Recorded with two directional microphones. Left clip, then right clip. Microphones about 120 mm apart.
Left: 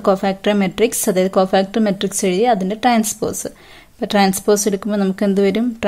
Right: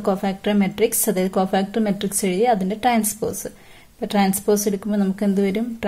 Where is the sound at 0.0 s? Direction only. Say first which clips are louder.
Left 6 dB; 25° left (ahead or behind).